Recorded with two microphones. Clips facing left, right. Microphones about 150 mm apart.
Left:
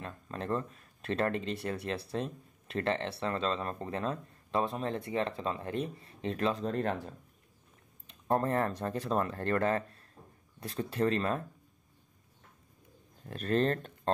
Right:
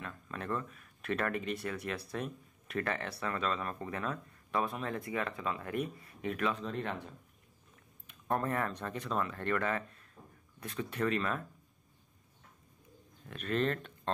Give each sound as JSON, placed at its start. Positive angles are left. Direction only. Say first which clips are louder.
{"t": 0.0, "sound": "speech", "louder": "left 3 dB", "side_deg": 30}
{"t": 13.2, "sound": "speech", "louder": "left 4 dB", "side_deg": 35}